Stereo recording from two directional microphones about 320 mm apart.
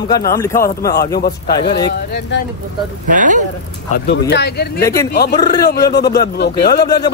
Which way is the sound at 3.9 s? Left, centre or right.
Left.